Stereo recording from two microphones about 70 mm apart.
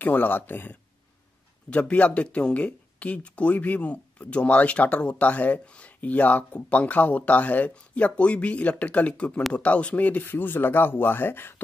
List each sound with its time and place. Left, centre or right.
0.0 s speech: left